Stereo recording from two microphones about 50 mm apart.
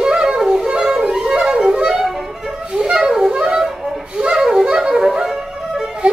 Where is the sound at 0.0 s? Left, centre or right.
Centre.